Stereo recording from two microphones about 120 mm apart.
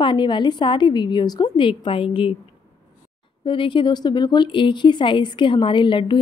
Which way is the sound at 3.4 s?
40° left (ahead or behind).